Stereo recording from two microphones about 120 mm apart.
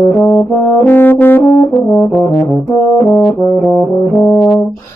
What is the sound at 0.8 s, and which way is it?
Brass instrument, 15° left (ahead or behind).